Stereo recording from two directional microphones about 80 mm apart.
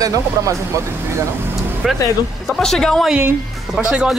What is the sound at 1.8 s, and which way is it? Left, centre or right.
Speech, centre.